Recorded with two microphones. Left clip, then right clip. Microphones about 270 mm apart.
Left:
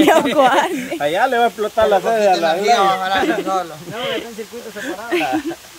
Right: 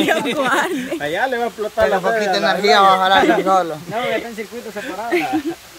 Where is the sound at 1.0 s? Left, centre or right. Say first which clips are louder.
Left 6 dB; left.